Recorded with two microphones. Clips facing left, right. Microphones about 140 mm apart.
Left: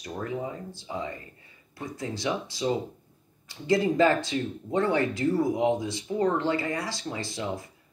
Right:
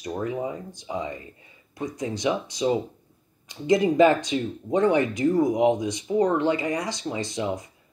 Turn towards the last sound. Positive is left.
turn(degrees=-20)  # may be behind; listen again after turning